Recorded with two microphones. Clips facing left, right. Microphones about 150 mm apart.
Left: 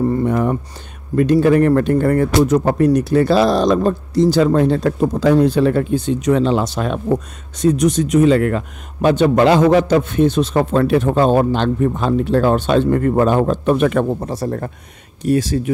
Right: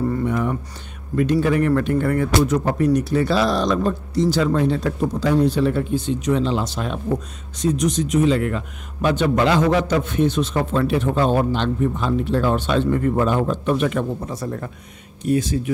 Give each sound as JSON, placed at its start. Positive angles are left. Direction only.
{"t": 0.1, "sound": "a sound", "side_deg": 40}
{"t": 1.1, "sound": "speech", "side_deg": 45}
{"t": 9.0, "sound": "speech", "side_deg": 40}
{"t": 14.2, "sound": "speech", "side_deg": 40}
{"t": 15.2, "sound": "speech", "side_deg": 85}